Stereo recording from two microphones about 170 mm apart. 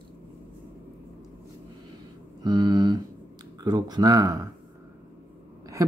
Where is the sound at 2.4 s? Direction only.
25° right (ahead or behind).